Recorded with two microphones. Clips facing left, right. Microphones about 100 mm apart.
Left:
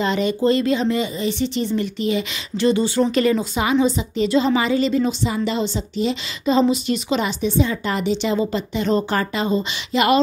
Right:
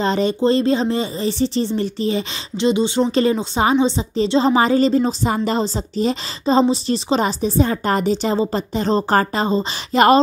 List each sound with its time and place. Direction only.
0.0 s a woman's voice: 35° right (ahead or behind)
2.5 s a woman's voice: 20° right (ahead or behind); by 10.1 s 35° right (ahead or behind)